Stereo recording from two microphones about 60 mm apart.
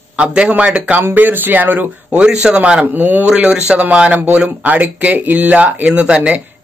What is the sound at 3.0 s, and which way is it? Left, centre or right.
Speech, right.